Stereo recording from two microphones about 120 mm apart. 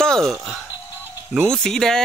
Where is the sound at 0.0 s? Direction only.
5° left (ahead or behind).